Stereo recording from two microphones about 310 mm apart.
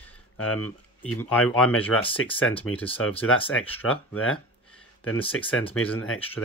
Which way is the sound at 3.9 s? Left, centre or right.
Left.